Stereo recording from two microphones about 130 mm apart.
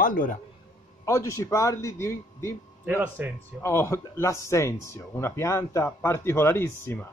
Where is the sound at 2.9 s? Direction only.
15° right (ahead or behind).